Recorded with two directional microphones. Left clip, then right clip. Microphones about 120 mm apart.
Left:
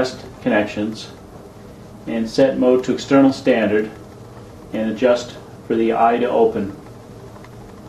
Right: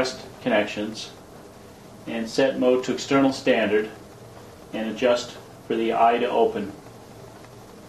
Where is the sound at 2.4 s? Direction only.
10° right (ahead or behind).